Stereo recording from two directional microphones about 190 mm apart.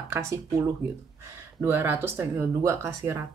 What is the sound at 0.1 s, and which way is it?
Speech, 15° right (ahead or behind).